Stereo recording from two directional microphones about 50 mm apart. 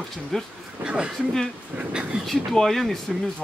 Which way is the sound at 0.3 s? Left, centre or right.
Centre.